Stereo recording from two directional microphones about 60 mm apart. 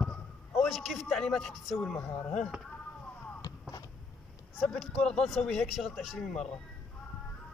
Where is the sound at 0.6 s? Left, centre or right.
Centre.